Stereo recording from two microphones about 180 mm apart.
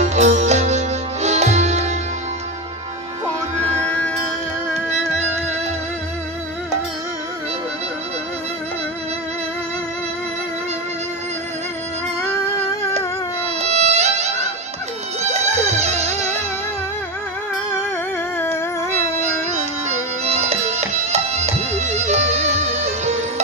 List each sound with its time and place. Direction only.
0.0 s music: 40° right (ahead or behind)
13.6 s violin: 35° right (ahead or behind)
15.2 s music: 40° right (ahead or behind)
19.1 s music: 40° right (ahead or behind)